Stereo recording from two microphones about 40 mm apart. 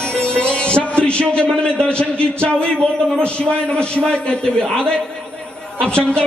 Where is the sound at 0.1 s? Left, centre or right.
Left.